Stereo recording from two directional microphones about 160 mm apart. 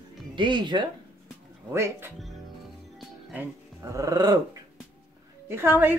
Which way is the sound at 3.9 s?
20° right (ahead or behind).